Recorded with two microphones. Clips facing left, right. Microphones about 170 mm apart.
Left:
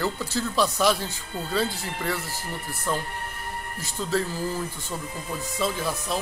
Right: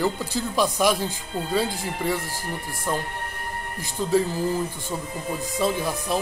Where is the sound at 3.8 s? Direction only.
15° right (ahead or behind).